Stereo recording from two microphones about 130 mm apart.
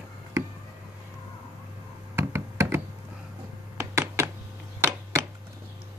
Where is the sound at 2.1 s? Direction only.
20° right (ahead or behind).